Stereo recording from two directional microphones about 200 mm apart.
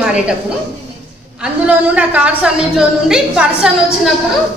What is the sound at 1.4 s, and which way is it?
A woman's voice, 5° right (ahead or behind).